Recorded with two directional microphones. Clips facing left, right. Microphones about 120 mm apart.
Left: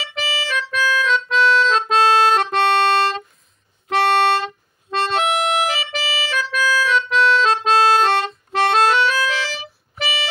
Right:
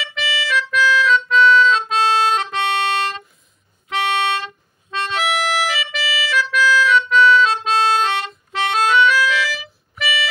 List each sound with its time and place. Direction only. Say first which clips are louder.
0.0 s harmonica: right 1 dB; 35° left (ahead or behind)
1.8 s music: left 3 dB; 45° left (ahead or behind)
3.9 s music: left 4 dB; 35° left (ahead or behind)
4.9 s harmonica: left 2 dB; 35° left (ahead or behind)